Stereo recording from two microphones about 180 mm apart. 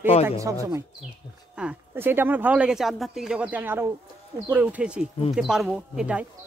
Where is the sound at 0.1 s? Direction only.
35° left (ahead or behind).